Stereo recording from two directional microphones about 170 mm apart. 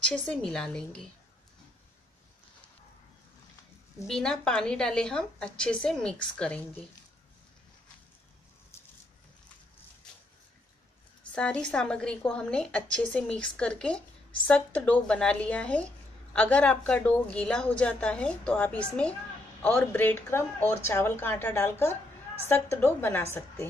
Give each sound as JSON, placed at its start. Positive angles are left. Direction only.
{"t": 0.0, "sound": "a woman's voice", "side_deg": 5}
{"t": 4.1, "sound": "a woman's voice", "side_deg": 5}
{"t": 8.7, "sound": "a sound", "side_deg": 15}
{"t": 11.3, "sound": "a woman's voice", "side_deg": 5}